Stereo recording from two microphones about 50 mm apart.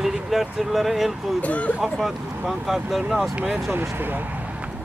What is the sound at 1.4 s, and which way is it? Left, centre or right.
Speech, left.